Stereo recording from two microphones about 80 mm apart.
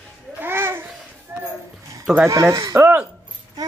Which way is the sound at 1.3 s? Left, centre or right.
Right.